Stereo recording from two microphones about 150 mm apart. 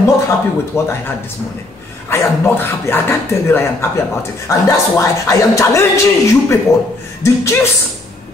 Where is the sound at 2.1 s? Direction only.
15° left (ahead or behind).